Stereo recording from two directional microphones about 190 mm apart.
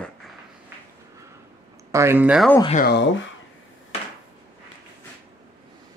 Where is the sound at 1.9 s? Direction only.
15° right (ahead or behind).